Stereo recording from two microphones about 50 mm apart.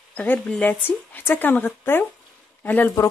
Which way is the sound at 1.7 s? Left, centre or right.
Left.